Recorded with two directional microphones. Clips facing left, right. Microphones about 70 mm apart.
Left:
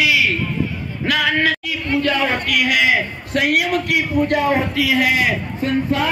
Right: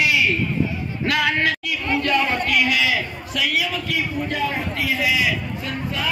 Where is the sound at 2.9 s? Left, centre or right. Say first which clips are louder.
Left 5 dB; left.